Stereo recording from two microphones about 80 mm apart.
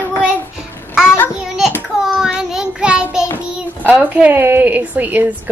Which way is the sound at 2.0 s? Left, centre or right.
Centre.